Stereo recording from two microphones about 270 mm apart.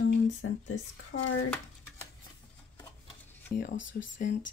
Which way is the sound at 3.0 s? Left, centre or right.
Left.